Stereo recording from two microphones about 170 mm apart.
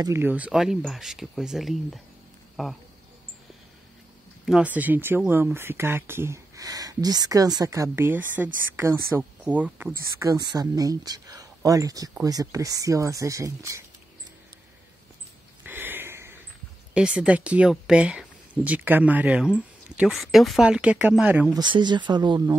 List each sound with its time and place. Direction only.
0.0 s speech: 15° right (ahead or behind)
4.5 s speech: 5° right (ahead or behind)
10.2 s speech: 20° right (ahead or behind)
15.6 s a sound: 10° right (ahead or behind)
16.9 s speech: 5° right (ahead or behind)
21.5 s speech: 25° right (ahead or behind)